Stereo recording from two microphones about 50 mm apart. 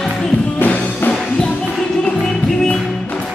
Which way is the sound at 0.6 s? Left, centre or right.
Left.